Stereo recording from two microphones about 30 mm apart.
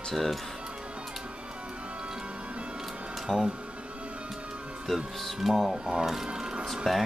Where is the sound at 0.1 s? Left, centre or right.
Centre.